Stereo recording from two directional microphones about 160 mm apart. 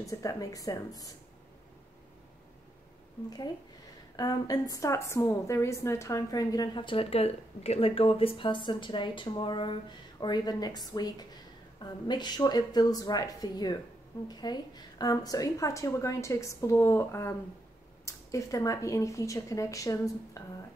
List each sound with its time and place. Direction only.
0.0 s a woman's voice: 20° left (ahead or behind)
4.2 s a woman's voice: 25° left (ahead or behind)